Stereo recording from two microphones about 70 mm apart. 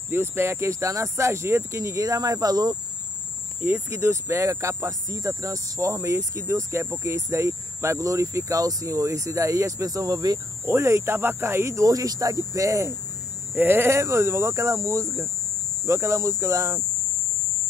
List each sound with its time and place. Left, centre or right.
0.1 s speech: right
3.9 s speech: right
10.7 s speech: right
13.6 s speech: right